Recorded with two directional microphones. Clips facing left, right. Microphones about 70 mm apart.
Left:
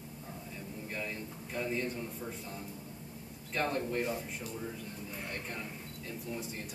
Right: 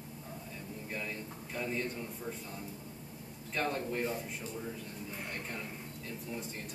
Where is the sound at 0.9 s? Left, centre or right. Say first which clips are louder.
Even; centre.